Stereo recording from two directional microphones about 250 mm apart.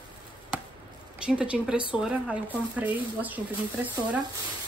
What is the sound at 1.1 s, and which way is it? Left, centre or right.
A woman's voice, centre.